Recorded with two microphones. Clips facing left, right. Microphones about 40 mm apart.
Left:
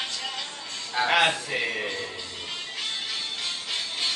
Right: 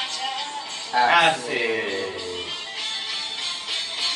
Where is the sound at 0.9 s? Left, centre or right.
Centre.